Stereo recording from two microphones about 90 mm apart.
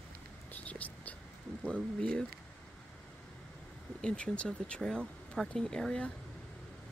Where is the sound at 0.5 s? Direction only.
15° left (ahead or behind).